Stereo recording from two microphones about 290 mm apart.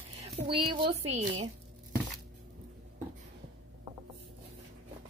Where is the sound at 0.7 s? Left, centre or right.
Centre.